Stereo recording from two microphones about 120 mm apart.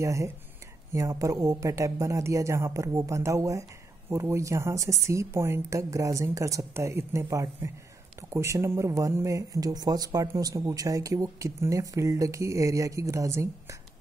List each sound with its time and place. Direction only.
0.0 s speech: 25° right (ahead or behind)